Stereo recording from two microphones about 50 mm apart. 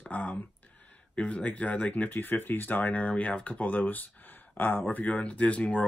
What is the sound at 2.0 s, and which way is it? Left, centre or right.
Speech, left.